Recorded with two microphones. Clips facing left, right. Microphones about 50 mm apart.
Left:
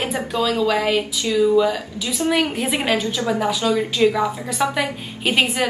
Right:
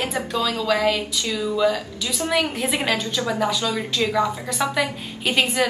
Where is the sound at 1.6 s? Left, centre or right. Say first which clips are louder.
Left 2 dB; centre.